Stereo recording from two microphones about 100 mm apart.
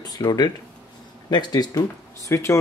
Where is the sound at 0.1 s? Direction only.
45° left (ahead or behind).